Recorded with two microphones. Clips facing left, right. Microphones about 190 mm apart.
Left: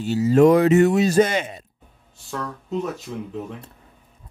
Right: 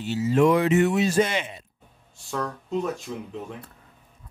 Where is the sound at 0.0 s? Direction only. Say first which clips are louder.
Left 5 dB; 40° left (ahead or behind).